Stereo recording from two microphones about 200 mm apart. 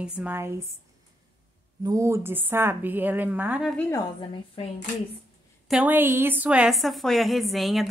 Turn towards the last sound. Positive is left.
turn(degrees=0)  # may be behind; listen again after turning